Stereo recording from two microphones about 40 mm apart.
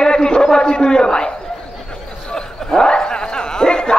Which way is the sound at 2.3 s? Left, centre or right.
Centre.